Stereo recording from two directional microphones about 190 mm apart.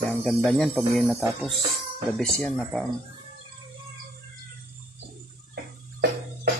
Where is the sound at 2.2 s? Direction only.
Centre (ahead or behind).